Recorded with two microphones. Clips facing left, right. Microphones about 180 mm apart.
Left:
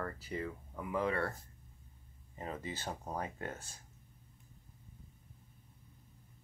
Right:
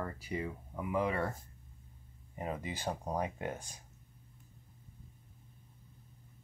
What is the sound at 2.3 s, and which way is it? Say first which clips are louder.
Speech: right 3 dB; 15° right (ahead or behind).